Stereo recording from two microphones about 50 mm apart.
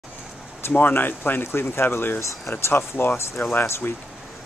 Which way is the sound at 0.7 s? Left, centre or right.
Left.